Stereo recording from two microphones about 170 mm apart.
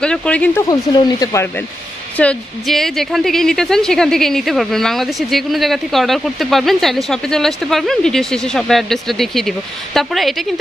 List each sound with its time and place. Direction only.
0.0 s speech: 5° left (ahead or behind)
0.7 s speech: 25° left (ahead or behind)
2.1 s a woman's voice: 5° left (ahead or behind)